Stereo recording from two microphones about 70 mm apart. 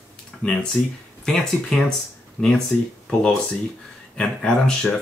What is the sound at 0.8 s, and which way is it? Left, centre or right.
Speech, left.